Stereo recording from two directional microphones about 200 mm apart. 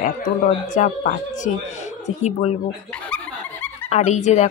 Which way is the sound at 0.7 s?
40° left (ahead or behind).